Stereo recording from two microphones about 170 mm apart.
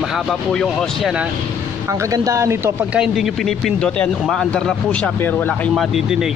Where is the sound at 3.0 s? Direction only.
Centre (ahead or behind).